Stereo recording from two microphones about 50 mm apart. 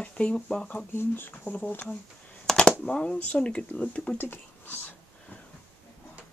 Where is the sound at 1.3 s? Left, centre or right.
Left.